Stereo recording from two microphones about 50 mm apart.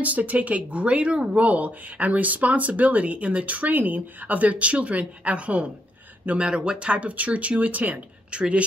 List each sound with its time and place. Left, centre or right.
0.0 s speech: right